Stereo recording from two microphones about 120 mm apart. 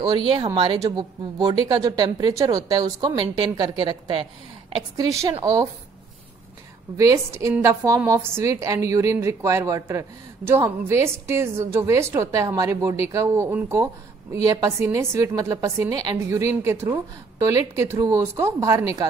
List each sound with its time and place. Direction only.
0.1 s speech: 45° right (ahead or behind)
0.7 s a woman's voice: 35° right (ahead or behind)
4.9 s a woman's voice: 25° right (ahead or behind)
7.0 s a woman's voice: 25° right (ahead or behind)